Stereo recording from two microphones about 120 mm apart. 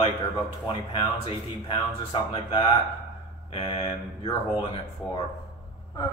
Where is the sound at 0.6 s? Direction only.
45° left (ahead or behind).